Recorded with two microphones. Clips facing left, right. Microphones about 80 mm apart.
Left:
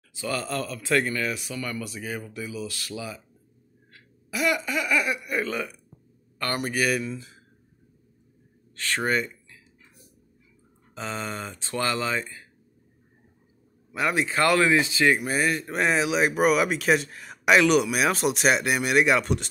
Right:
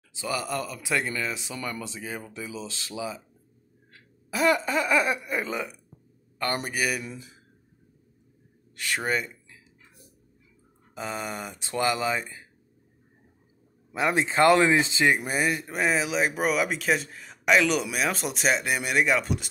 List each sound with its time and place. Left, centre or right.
0.1 s speech: centre
3.9 s speech: right; by 7.3 s centre
8.7 s speech: centre
11.0 s speech: centre
13.9 s speech: right
15.7 s speech: centre